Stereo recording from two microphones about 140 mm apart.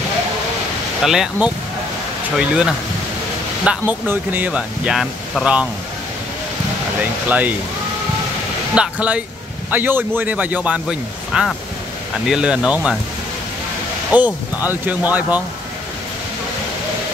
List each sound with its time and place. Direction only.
1.0 s speech: 5° right (ahead or behind)
7.0 s speech: 10° right (ahead or behind)
8.7 s speech: 10° right (ahead or behind)
14.1 s speech: 10° right (ahead or behind)